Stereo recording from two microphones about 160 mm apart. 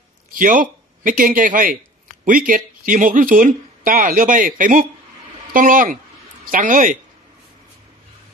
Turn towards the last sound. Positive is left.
turn(degrees=-55)  # may be behind; listen again after turning